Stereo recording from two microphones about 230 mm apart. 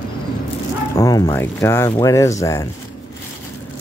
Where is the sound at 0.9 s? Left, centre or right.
Centre.